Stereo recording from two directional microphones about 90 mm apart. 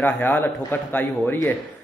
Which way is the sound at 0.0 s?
20° left (ahead or behind).